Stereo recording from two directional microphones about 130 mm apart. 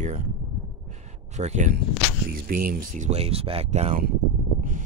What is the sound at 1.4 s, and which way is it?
Speech, 65° right (ahead or behind).